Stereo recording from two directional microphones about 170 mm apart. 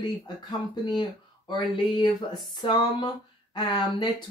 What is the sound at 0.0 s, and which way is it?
Speech, 25° left (ahead or behind).